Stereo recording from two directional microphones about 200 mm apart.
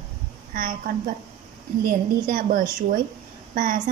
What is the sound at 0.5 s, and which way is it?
Speech, 45° right (ahead or behind).